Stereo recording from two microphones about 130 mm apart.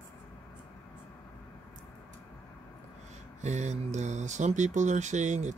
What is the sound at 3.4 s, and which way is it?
Speech, 60° right (ahead or behind).